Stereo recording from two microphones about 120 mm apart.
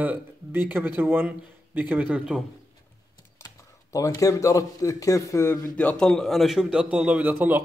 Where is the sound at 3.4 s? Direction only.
25° left (ahead or behind).